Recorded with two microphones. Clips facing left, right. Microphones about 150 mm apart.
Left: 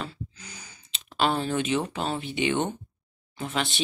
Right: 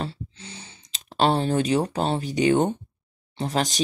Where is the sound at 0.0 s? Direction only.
30° right (ahead or behind).